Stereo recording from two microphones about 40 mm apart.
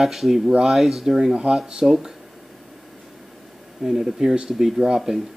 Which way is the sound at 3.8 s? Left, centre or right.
Centre.